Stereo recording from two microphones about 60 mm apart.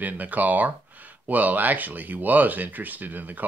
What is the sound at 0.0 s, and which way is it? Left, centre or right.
Speech, right.